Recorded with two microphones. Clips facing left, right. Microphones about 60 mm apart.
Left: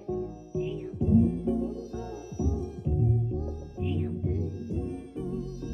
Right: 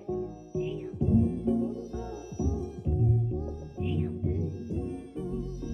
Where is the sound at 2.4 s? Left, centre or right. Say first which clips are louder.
Left 1 dB; right.